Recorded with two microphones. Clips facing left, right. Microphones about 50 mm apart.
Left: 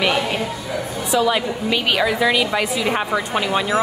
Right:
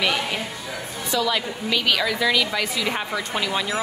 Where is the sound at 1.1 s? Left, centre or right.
Left.